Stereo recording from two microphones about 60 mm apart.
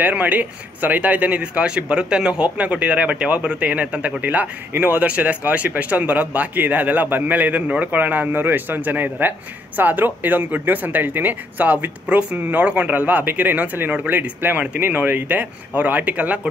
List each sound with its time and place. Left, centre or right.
0.0 s a man's voice: right